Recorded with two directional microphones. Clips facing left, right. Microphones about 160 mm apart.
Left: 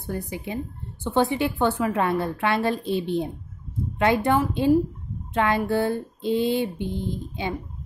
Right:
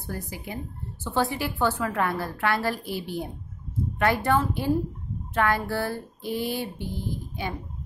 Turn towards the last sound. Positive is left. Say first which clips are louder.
# left 3 dB
turn(degrees=20)  # may be behind; listen again after turning